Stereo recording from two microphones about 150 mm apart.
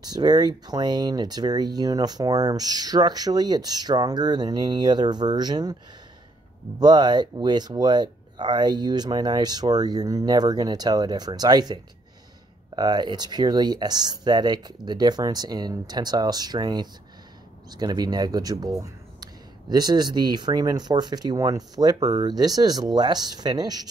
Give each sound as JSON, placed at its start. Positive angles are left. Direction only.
{"t": 0.0, "sound": "speech", "side_deg": -25}
{"t": 6.8, "sound": "speech", "side_deg": -30}